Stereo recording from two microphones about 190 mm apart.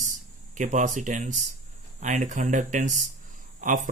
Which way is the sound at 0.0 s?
40° right (ahead or behind).